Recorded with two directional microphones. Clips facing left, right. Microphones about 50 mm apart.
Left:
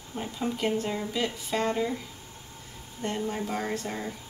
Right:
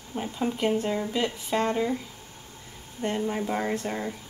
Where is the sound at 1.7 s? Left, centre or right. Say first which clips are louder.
Right 2 dB; centre.